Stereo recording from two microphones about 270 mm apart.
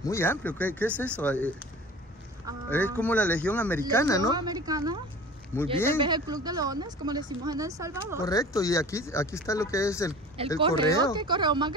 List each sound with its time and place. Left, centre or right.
0.0 s speech: centre
2.7 s speech: centre
4.3 s a woman's voice: centre
5.5 s speech: centre
5.9 s a woman's voice: centre
8.2 s speech: centre
10.4 s a woman's voice: right